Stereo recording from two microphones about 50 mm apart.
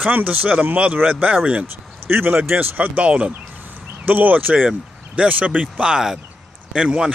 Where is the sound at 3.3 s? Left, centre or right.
Right.